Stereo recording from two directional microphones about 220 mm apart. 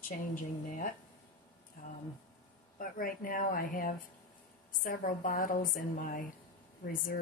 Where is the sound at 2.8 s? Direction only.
40° left (ahead or behind).